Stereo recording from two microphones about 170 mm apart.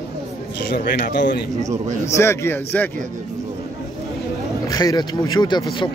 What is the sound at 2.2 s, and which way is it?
Speech, 15° left (ahead or behind).